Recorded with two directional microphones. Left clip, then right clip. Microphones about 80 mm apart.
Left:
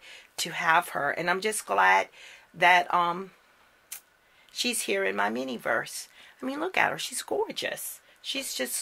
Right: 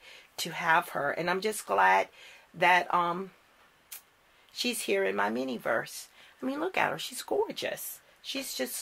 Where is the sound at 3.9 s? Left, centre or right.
Left.